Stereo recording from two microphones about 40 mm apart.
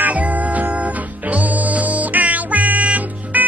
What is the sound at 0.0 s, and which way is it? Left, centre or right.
Music, right.